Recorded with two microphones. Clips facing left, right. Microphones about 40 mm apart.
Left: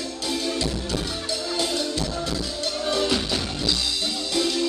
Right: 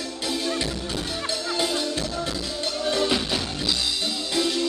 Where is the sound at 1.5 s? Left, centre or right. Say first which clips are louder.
Even; centre.